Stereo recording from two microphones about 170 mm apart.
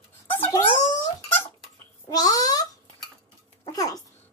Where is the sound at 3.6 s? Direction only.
20° left (ahead or behind).